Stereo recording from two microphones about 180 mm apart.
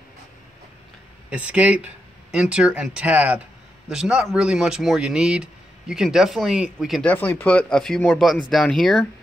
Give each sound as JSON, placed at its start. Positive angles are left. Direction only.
{"t": 1.3, "sound": "speech", "side_deg": -5}